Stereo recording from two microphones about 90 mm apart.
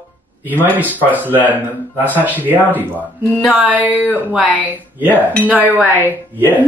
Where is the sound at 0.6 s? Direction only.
20° right (ahead or behind).